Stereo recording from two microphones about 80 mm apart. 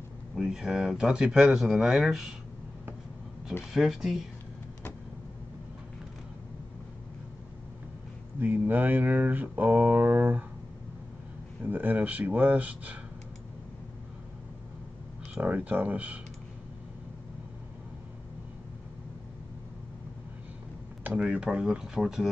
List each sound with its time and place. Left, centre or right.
0.4 s speech: centre
3.7 s speech: centre
8.4 s speech: right
11.6 s speech: right
15.4 s speech: centre
21.0 s speech: centre